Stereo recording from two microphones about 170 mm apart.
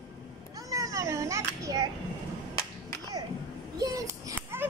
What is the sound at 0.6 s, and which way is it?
Children playing, 20° right (ahead or behind).